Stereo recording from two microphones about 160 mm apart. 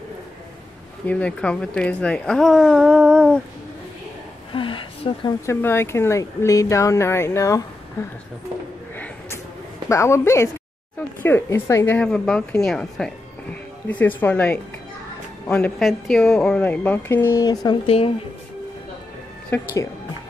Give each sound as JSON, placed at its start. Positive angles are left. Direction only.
{"t": 1.0, "sound": "a woman's voice", "side_deg": 5}
{"t": 4.5, "sound": "a sound", "side_deg": 30}
{"t": 5.5, "sound": "speech", "side_deg": 15}
{"t": 8.9, "sound": "a sound", "side_deg": 10}
{"t": 9.8, "sound": "a woman's voice", "side_deg": 20}
{"t": 17.8, "sound": "speech", "side_deg": 35}
{"t": 19.5, "sound": "speech", "side_deg": 20}